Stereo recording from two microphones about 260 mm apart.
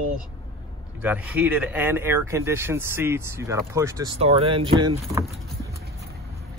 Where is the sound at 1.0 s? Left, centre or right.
Centre.